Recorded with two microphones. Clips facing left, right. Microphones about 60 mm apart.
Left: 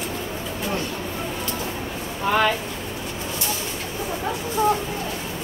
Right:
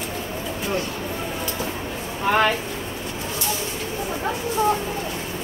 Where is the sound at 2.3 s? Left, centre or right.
Right.